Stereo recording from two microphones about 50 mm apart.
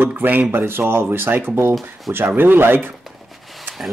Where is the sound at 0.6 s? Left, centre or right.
Right.